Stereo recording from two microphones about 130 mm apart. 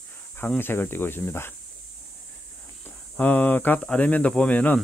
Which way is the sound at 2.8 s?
10° left (ahead or behind).